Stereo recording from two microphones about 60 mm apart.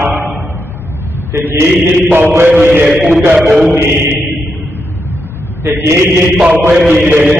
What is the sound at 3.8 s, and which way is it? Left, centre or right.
Chant, right.